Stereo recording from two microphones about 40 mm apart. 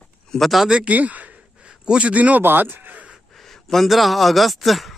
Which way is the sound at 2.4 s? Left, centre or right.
Right.